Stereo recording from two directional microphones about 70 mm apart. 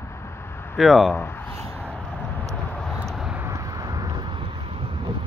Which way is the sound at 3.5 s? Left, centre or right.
Right.